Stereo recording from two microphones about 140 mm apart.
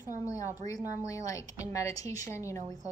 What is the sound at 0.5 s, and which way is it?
Speech, 25° left (ahead or behind).